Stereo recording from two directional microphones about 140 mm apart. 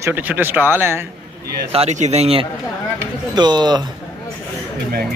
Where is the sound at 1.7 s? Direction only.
50° right (ahead or behind).